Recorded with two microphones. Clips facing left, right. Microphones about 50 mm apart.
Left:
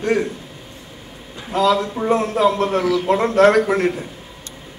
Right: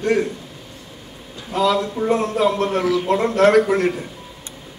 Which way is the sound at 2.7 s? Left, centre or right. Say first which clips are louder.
Left 1 dB; centre.